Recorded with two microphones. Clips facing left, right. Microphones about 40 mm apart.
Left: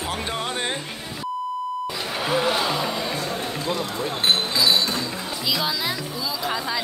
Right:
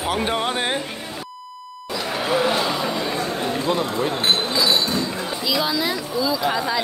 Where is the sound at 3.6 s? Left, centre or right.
Right.